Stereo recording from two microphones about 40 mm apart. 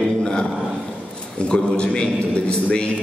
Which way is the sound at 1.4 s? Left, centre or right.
Left.